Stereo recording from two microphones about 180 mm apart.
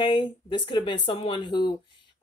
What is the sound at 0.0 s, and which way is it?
Speech, 25° left (ahead or behind).